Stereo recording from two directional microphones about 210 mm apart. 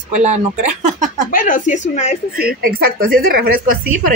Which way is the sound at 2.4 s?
45° right (ahead or behind).